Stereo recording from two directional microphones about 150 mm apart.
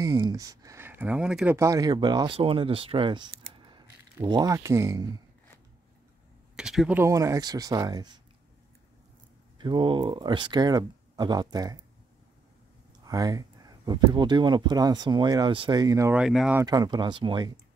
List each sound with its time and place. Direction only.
0.0 s speech: 25° right (ahead or behind); by 1.6 s 10° right (ahead or behind)
1.6 s speech: 25° right (ahead or behind)
6.5 s speech: 5° right (ahead or behind)
7.0 s speech: 20° right (ahead or behind)
9.6 s speech: 30° right (ahead or behind)
13.0 s speech: 25° right (ahead or behind)
16.1 s speech: 5° right (ahead or behind)
16.6 s speech: 25° right (ahead or behind)